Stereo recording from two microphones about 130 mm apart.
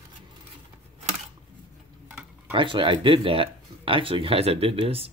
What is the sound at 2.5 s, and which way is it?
Speech, 40° right (ahead or behind).